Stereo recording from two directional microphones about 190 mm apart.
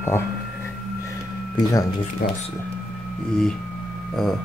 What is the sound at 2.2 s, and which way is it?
Speech, 55° left (ahead or behind).